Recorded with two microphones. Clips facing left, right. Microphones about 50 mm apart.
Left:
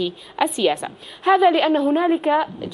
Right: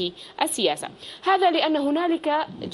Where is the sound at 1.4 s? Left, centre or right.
Centre.